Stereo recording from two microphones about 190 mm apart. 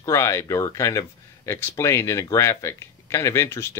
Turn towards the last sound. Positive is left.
turn(degrees=15)  # may be behind; listen again after turning